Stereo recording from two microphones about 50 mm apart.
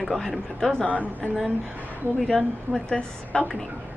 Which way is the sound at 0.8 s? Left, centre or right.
Right.